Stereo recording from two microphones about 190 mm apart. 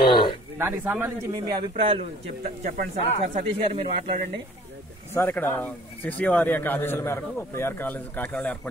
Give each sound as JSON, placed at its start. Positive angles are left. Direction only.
{"t": 0.1, "sound": "speech", "side_deg": 25}
{"t": 0.6, "sound": "a man's voice", "side_deg": -10}
{"t": 1.7, "sound": "speech", "side_deg": -30}
{"t": 2.4, "sound": "speech", "side_deg": -45}
{"t": 5.1, "sound": "speech", "side_deg": 10}